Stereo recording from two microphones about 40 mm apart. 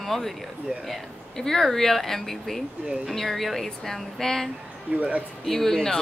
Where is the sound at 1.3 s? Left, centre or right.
Centre.